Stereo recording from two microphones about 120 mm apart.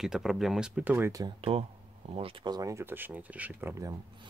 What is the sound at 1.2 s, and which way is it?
Speech, 50° right (ahead or behind).